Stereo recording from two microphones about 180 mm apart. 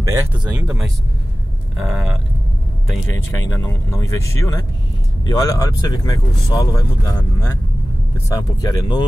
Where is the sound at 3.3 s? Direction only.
15° left (ahead or behind).